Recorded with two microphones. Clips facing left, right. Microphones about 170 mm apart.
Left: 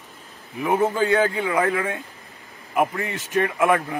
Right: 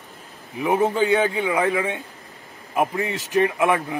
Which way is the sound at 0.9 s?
20° right (ahead or behind).